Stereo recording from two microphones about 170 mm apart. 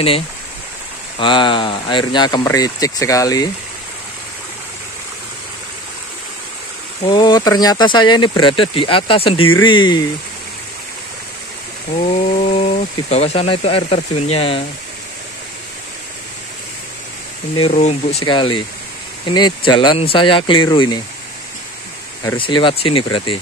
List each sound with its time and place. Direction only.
1.2 s speech: 30° left (ahead or behind)
7.1 s speech: 25° left (ahead or behind)
12.1 s speech: 40° left (ahead or behind)
17.6 s speech: 40° left (ahead or behind)
18.2 s speech: 30° left (ahead or behind)
22.4 s speech: 30° left (ahead or behind)